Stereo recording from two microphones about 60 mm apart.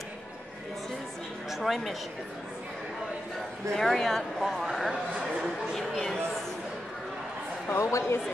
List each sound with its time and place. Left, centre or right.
1.5 s speech: centre
3.7 s speech: centre
5.7 s a sound: centre
7.8 s speech: left